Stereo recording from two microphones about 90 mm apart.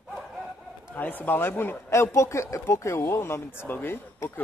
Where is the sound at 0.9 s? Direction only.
20° left (ahead or behind).